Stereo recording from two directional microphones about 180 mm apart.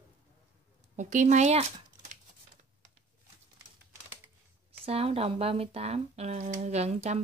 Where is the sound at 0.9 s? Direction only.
40° right (ahead or behind).